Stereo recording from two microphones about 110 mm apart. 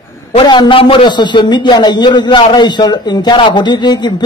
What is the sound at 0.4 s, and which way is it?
A man's voice, 45° left (ahead or behind).